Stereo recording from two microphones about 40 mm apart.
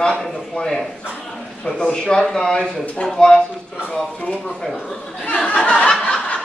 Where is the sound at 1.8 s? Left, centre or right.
Centre.